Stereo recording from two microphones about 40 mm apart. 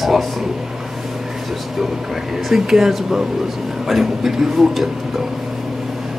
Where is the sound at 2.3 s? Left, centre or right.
Centre.